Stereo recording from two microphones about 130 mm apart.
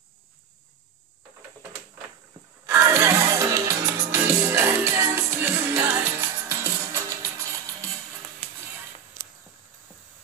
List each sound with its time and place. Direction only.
2.6 s music: 20° right (ahead or behind)
8.4 s music: 10° right (ahead or behind)